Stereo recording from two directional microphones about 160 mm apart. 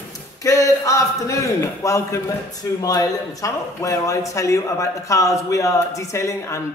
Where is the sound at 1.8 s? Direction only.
20° left (ahead or behind).